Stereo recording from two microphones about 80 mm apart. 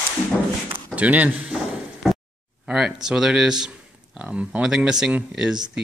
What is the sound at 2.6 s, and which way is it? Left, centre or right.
Speech, centre.